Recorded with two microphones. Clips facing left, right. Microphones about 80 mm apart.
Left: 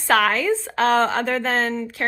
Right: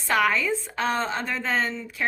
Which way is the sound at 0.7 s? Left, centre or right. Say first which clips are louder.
Left 9 dB; left.